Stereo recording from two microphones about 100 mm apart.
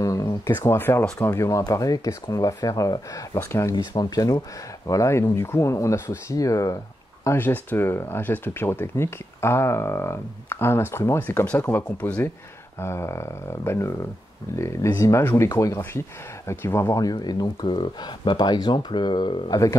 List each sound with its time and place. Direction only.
0.0 s a sound: 35° left (ahead or behind)
0.5 s speech: 20° left (ahead or behind)
7.2 s speech: 20° left (ahead or behind); by 19.5 s 55° left (ahead or behind)